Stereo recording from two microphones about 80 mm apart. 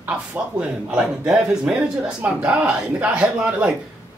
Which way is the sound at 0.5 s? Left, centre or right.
Centre.